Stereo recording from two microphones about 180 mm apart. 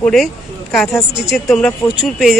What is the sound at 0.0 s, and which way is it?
Speech, 5° left (ahead or behind).